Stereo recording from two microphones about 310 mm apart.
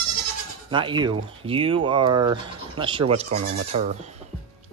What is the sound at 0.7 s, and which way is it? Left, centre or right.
Speech, centre.